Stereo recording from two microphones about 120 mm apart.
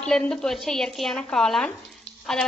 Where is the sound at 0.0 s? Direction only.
5° left (ahead or behind).